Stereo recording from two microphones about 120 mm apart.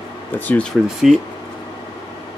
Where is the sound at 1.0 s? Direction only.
5° right (ahead or behind).